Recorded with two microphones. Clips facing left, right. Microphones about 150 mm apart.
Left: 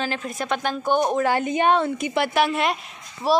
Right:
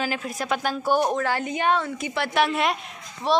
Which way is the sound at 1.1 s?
15° left (ahead or behind).